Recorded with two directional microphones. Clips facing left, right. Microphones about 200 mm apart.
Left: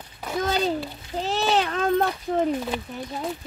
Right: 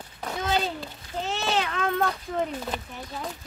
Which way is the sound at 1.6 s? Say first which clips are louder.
Left 4 dB; 35° left (ahead or behind).